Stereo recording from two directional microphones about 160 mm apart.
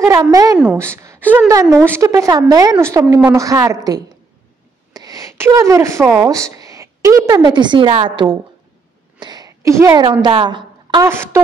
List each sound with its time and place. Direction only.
0.0 s a woman's voice: 20° right (ahead or behind)
0.6 s a woman's voice: 10° right (ahead or behind); by 8.4 s 30° right (ahead or behind)
9.2 s a sound: 25° right (ahead or behind)
10.2 s speech: 30° right (ahead or behind)
11.1 s a woman's voice: 15° right (ahead or behind)